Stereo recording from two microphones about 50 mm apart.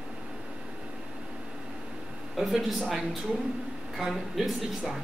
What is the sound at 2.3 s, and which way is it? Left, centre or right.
A man's voice, centre.